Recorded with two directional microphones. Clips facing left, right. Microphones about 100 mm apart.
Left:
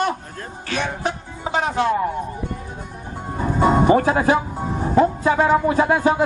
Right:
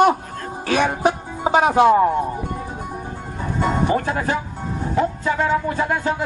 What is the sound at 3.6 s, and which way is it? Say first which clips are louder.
Music: left 5 dB; 40° left (ahead or behind).